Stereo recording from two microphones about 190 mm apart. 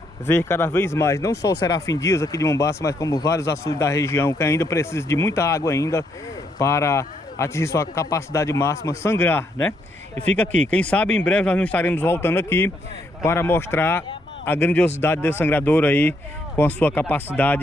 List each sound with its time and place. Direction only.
0.3 s speech: 10° left (ahead or behind)
1.3 s speech: 60° left (ahead or behind)
1.6 s speech: 20° left (ahead or behind)